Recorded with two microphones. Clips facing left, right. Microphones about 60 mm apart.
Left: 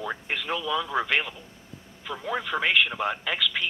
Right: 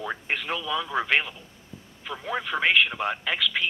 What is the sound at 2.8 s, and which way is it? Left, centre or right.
Speech, centre.